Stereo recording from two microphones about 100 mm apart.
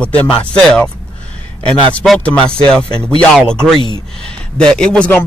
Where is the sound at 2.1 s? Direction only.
10° left (ahead or behind).